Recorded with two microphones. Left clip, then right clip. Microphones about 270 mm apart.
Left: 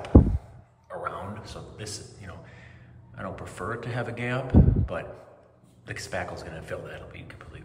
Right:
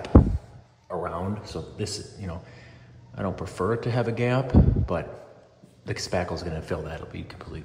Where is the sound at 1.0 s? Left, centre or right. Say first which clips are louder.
Right 3 dB; centre.